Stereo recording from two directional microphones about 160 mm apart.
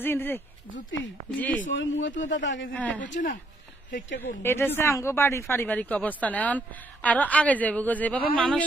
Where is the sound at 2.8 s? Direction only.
10° left (ahead or behind).